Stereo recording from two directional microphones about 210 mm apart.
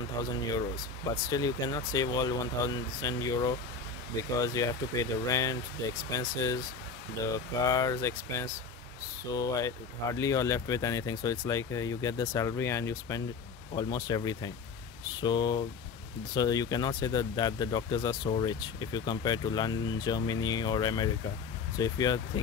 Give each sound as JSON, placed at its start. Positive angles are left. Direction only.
{"t": 1.3, "sound": "speech", "side_deg": 20}